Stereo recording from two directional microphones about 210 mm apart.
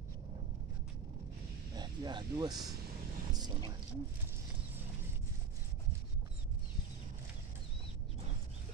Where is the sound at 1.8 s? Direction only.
20° right (ahead or behind).